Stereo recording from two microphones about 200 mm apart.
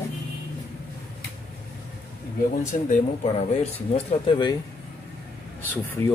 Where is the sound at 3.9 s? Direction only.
30° left (ahead or behind).